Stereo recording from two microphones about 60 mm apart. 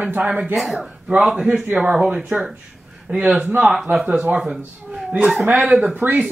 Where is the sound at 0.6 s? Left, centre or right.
Centre.